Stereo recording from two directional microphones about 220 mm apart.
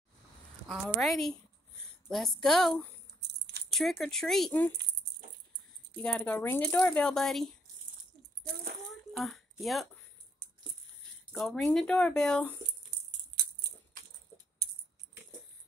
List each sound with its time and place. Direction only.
0.7 s speech: 5° left (ahead or behind)
3.2 s a sound: 50° right (ahead or behind)
3.7 s speech: centre (ahead or behind)
5.9 s speech: 5° left (ahead or behind)
9.1 s a sound: centre (ahead or behind)
11.3 s speech: centre (ahead or behind)
12.9 s music: 45° right (ahead or behind)